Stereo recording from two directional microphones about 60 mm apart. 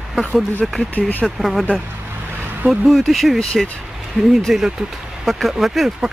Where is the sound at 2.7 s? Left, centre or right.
Centre.